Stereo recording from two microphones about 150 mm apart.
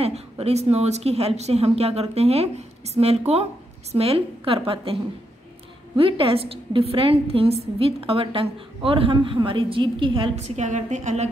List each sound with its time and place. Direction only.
0.0 s a woman's voice: 45° right (ahead or behind)
5.9 s a woman's voice: 40° right (ahead or behind); by 11.2 s 55° right (ahead or behind)